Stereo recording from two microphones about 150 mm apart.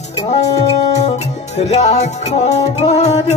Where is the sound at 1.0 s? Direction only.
45° left (ahead or behind).